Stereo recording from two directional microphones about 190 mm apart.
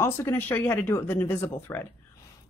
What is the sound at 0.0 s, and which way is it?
Speech, 10° left (ahead or behind).